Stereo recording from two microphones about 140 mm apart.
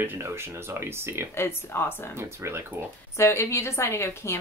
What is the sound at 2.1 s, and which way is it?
Speech, 20° right (ahead or behind).